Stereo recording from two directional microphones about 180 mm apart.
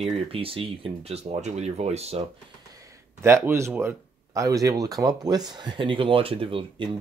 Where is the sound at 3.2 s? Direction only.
15° right (ahead or behind).